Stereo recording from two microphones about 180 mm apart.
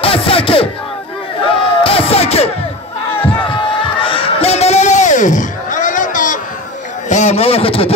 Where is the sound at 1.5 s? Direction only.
30° left (ahead or behind).